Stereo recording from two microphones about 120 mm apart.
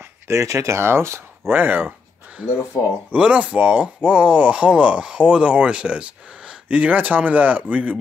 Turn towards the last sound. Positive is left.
turn(degrees=-15)  # may be behind; listen again after turning